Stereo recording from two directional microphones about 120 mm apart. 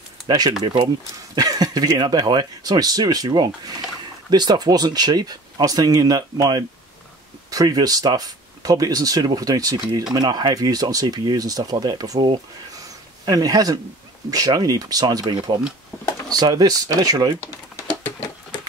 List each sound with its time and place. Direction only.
0.3 s speech: 35° right (ahead or behind)
17.4 s typing: 15° left (ahead or behind)